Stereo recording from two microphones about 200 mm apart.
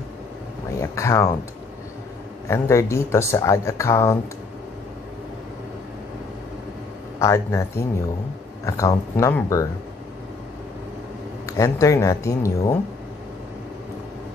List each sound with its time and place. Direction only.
0.7 s speech: 15° left (ahead or behind)
2.4 s speech: 15° left (ahead or behind)
7.2 s speech: 15° left (ahead or behind)
11.4 s speech: 15° left (ahead or behind)